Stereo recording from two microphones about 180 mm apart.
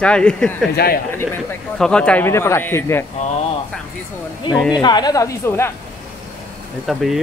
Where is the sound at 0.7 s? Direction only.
60° left (ahead or behind).